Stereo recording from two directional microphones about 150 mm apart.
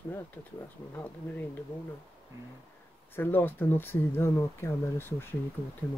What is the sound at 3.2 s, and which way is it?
Speech, 15° left (ahead or behind).